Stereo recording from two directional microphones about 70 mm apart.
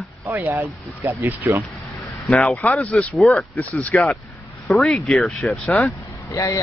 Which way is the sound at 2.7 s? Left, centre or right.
Centre.